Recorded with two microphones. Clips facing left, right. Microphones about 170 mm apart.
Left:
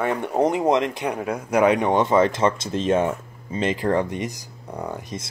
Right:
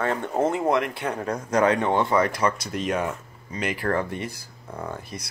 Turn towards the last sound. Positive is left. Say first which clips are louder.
# left 3 dB
turn(degrees=20)  # may be behind; listen again after turning